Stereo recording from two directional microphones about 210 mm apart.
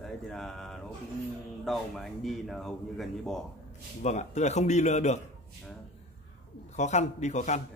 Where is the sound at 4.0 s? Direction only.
30° left (ahead or behind).